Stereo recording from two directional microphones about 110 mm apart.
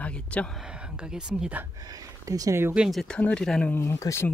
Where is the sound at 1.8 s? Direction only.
35° right (ahead or behind).